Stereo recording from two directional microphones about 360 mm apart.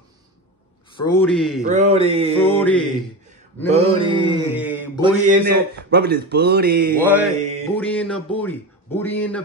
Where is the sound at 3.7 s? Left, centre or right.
Centre.